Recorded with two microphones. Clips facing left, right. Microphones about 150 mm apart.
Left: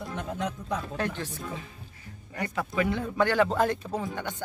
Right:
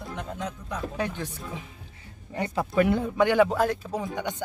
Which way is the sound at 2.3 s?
25° right (ahead or behind).